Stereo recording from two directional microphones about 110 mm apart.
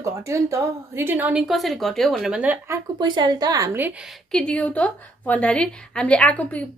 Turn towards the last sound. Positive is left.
turn(degrees=10)  # may be behind; listen again after turning